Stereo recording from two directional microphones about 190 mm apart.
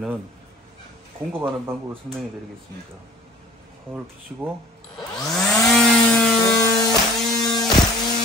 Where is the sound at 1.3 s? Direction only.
10° right (ahead or behind).